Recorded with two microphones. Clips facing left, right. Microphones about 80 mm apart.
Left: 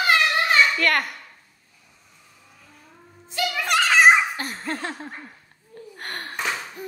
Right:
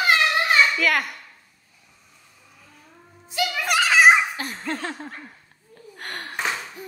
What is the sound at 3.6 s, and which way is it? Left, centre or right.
Giggle, centre.